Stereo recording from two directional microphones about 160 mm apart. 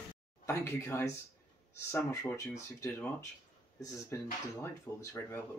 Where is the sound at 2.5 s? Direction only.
15° left (ahead or behind).